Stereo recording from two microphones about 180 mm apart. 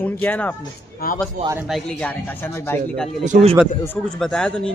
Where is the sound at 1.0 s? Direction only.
55° left (ahead or behind).